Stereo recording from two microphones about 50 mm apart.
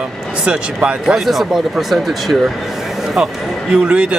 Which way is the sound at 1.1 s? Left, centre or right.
Centre.